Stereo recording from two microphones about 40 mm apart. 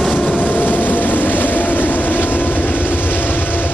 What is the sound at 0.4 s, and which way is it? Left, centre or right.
Vehicle, left.